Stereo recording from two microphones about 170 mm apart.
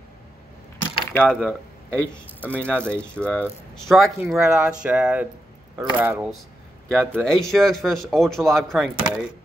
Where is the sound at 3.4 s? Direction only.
Centre (ahead or behind).